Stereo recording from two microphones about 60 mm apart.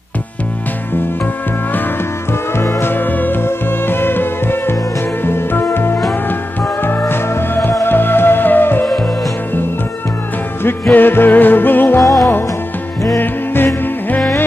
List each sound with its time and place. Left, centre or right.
2.5 s music: left
10.6 s music: left
12.0 s music: left
13.2 s music: left